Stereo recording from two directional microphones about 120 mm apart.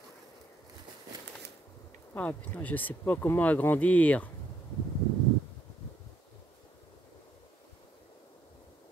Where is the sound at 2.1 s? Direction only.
15° left (ahead or behind).